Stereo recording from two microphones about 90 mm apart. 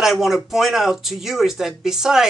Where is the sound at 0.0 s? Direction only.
5° right (ahead or behind).